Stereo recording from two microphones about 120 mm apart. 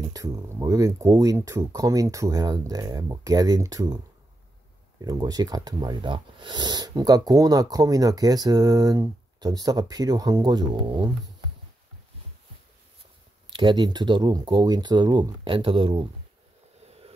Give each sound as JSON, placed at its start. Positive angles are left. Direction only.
{"t": 0.0, "sound": "speech", "side_deg": -30}
{"t": 5.0, "sound": "speech", "side_deg": -35}
{"t": 13.5, "sound": "speech", "side_deg": -40}